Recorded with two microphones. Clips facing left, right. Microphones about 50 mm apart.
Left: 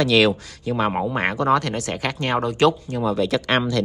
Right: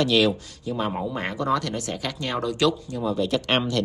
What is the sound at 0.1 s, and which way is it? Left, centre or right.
Speech, left.